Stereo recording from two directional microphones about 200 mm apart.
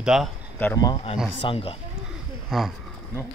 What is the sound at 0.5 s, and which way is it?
Speech, 10° left (ahead or behind).